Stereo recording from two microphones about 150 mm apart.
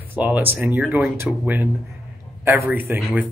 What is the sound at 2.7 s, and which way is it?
Speech, 10° right (ahead or behind).